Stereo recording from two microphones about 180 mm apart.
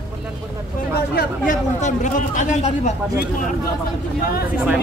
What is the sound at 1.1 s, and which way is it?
Speech, 60° left (ahead or behind).